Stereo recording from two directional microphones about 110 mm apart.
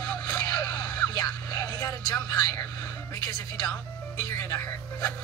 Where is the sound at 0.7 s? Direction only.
20° left (ahead or behind).